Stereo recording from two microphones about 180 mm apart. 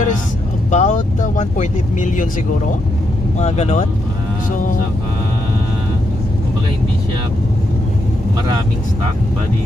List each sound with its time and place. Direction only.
0.7 s speech: 40° left (ahead or behind)
3.3 s speech: 40° left (ahead or behind)